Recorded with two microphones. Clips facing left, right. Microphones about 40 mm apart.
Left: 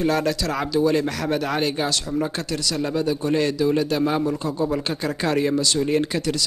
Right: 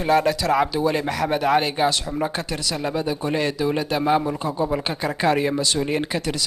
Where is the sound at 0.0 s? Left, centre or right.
Centre.